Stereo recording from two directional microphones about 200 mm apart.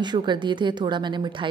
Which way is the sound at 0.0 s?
20° right (ahead or behind).